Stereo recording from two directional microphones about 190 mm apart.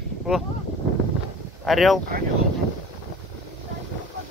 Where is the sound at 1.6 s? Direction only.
Centre (ahead or behind).